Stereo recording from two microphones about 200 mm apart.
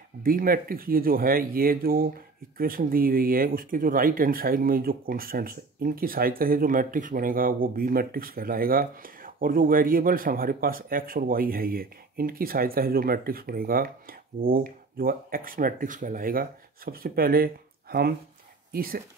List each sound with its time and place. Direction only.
0.2 s speech: 45° right (ahead or behind)